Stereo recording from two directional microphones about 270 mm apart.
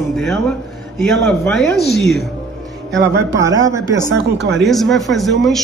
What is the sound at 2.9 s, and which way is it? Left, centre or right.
Speech, right.